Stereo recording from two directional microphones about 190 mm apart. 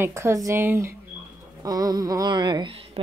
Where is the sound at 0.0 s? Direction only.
15° right (ahead or behind).